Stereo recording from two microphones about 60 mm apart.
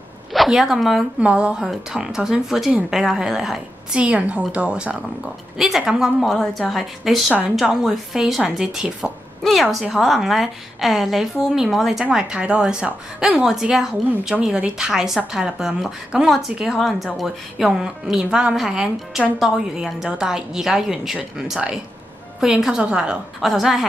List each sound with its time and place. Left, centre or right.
0.5 s a woman's voice: centre
1.2 s speech: centre
4.0 s a woman's voice: right
5.6 s speech: centre
6.3 s a woman's voice: centre
9.4 s a woman's voice: centre
23.4 s a woman's voice: centre